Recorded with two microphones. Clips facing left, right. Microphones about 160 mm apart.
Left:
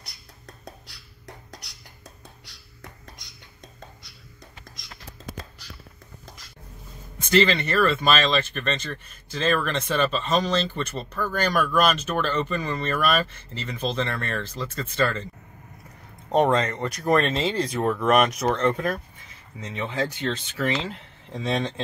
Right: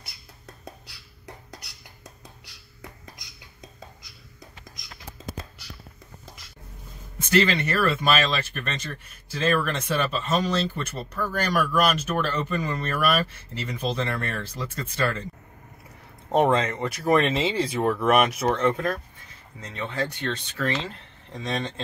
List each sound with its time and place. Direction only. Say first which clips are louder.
0.0 s a sound: even; centre (ahead or behind)
2.2 s whispering: even; centre (ahead or behind)
7.2 s speech: left 1 dB; 10° right (ahead or behind)
16.3 s speech: even; 5° right (ahead or behind)
20.5 s speech: left 2 dB; 15° left (ahead or behind)